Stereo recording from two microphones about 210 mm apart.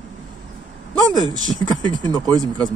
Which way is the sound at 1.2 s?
20° right (ahead or behind).